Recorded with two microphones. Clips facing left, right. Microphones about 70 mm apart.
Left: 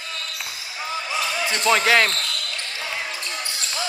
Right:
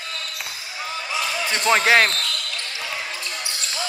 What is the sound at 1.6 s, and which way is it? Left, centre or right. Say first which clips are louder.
Speech: right 1 dB; right.